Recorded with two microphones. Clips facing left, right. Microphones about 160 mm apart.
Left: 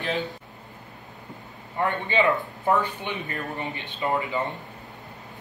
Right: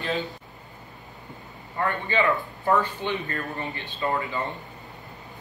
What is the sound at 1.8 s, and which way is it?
Speech, 20° left (ahead or behind).